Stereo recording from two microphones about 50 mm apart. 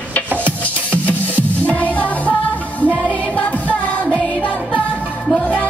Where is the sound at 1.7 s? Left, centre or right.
Left.